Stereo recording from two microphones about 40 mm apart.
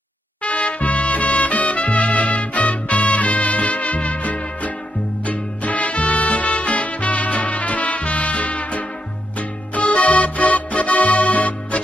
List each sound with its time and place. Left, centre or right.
0.4 s music: left